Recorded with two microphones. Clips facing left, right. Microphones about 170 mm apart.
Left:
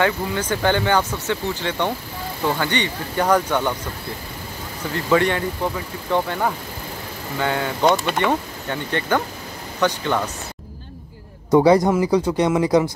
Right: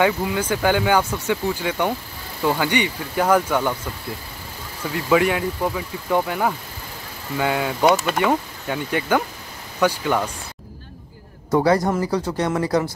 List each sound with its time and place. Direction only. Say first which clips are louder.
0.0 s speech: right 1 dB; 10° right (ahead or behind)
4.9 s speech: even; 5° right (ahead or behind)
11.5 s speech: left 4 dB; 15° left (ahead or behind)